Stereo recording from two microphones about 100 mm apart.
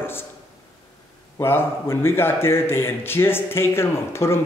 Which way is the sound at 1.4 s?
25° left (ahead or behind).